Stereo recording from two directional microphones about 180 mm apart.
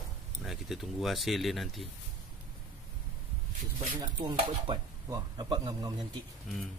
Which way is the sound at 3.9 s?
20° right (ahead or behind).